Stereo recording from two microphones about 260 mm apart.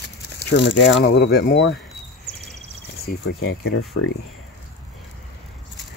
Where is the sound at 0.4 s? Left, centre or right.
Left.